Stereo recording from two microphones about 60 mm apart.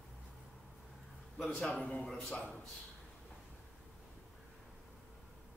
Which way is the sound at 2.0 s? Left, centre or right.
Centre.